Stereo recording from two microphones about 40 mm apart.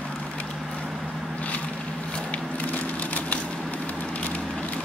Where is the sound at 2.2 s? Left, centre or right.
Left.